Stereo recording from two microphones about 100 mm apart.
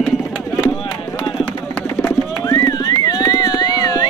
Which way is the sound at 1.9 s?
30° left (ahead or behind).